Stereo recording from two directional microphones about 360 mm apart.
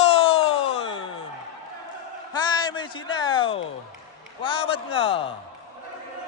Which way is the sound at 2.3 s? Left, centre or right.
Centre.